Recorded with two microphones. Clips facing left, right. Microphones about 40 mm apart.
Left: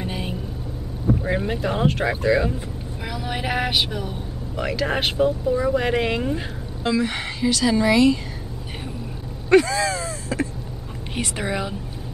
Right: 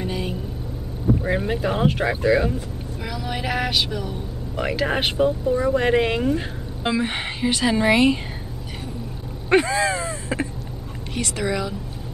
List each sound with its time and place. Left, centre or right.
0.0 s vehicle: centre
1.2 s speech: centre
3.1 s a sound: centre
4.6 s speech: centre
6.8 s a woman's voice: right
9.5 s a sound: right
11.1 s a woman's voice: left